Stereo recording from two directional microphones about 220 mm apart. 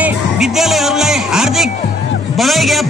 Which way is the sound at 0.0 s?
Centre (ahead or behind).